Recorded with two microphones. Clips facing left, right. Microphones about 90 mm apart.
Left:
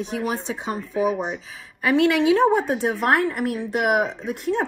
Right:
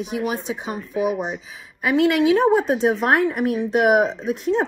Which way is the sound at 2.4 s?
15° right (ahead or behind).